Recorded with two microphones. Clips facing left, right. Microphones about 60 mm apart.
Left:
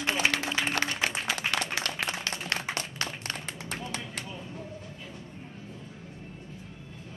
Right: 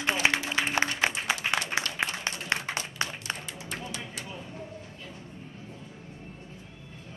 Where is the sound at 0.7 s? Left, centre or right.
Right.